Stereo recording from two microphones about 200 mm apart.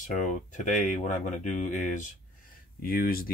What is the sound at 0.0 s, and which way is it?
Speech, 40° left (ahead or behind).